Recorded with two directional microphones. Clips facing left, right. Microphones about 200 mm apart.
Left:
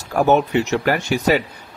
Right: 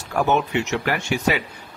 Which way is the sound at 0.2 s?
40° left (ahead or behind).